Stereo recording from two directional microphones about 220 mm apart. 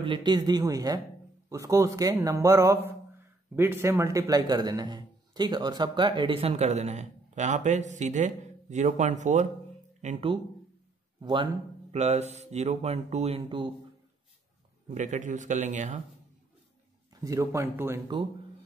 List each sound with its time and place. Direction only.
0.0 s a man's voice: 20° right (ahead or behind)
10.0 s a man's voice: 25° right (ahead or behind)
14.9 s a man's voice: 35° right (ahead or behind)
17.1 s a man's voice: 15° right (ahead or behind)